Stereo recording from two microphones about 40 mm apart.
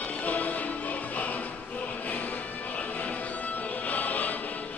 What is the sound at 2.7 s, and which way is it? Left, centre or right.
Music, left.